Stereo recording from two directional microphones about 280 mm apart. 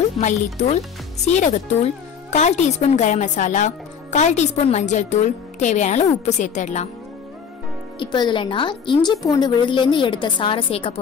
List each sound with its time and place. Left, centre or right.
0.2 s speech: left
8.0 s a woman's voice: centre